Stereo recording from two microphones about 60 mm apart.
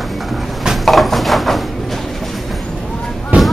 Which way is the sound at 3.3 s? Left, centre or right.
Right.